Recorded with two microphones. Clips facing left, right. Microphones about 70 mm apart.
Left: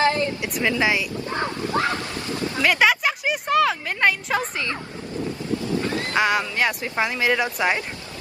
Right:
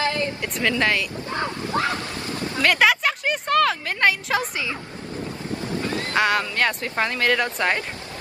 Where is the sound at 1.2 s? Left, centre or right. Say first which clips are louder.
Left 1 dB; left.